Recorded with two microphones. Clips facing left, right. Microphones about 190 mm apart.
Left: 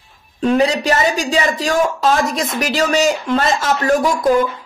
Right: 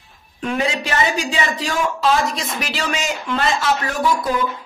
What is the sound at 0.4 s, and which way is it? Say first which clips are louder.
Speech: left 7 dB; 35° left (ahead or behind).